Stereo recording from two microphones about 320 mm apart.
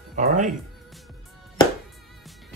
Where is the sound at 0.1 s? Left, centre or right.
Right.